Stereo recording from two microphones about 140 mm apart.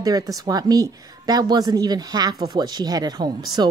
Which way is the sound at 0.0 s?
25° right (ahead or behind).